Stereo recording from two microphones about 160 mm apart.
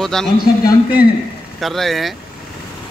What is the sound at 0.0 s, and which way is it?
Speech, 5° left (ahead or behind).